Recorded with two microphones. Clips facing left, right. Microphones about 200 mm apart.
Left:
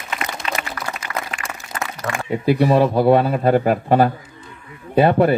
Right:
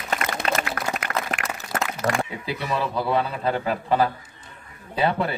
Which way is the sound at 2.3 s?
50° left (ahead or behind).